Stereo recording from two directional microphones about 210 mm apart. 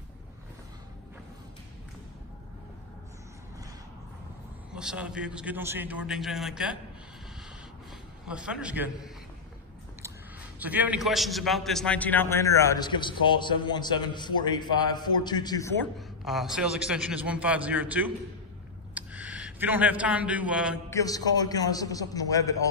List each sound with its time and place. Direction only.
4.7 s a man's voice: 5° right (ahead or behind)
8.3 s a man's voice: 5° right (ahead or behind)
10.6 s a man's voice: 10° right (ahead or behind); by 15.7 s 20° left (ahead or behind)
15.8 s a man's voice: centre (ahead or behind)
20.9 s a man's voice: 15° left (ahead or behind)